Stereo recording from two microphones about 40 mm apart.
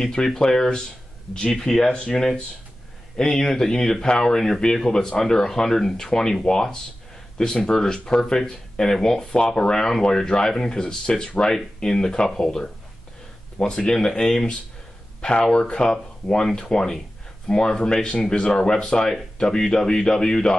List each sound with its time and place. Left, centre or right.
0.0 s speech: centre
15.5 s speech: left